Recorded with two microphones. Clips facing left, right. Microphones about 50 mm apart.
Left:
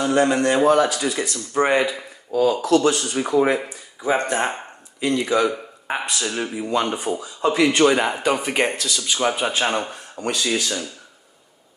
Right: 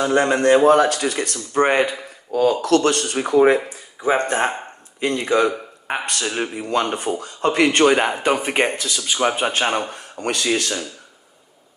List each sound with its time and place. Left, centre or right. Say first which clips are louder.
0.0 s speech: right 1 dB; right
1.0 s speech: right 1 dB; right
1.5 s speech: right 2 dB; right
4.0 s speech: right 2 dB; right
5.9 s speech: right 1 dB; right
6.2 s speech: right 2 dB; right
6.7 s speech: right 1 dB; right
7.8 s speech: right 1 dB; right; by 9.8 s centre
10.2 s speech: right 1 dB; right